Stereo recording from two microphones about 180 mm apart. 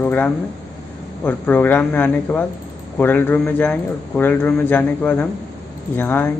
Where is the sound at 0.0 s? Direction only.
10° left (ahead or behind).